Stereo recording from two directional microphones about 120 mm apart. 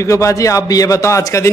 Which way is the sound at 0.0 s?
25° left (ahead or behind).